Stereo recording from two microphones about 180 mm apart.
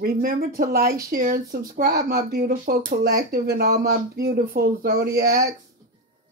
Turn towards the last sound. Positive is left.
turn(degrees=-55)  # may be behind; listen again after turning